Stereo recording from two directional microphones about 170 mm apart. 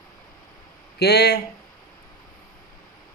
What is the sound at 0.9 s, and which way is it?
Speech, 70° left (ahead or behind).